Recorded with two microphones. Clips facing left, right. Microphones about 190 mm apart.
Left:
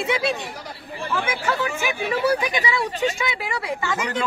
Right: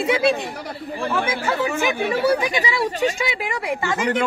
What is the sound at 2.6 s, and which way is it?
Speech, 40° right (ahead or behind).